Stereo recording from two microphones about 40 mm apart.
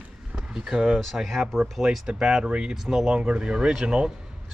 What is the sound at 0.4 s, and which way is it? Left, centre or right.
Speech, centre.